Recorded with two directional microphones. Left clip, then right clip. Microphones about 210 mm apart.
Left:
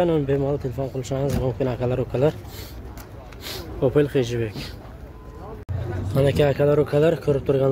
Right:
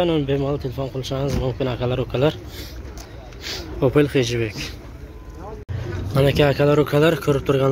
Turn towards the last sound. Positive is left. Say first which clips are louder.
# right 1 dB
turn(degrees=0)  # may be behind; listen again after turning